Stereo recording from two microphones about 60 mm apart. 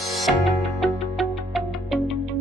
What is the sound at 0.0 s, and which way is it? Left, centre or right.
Music, centre.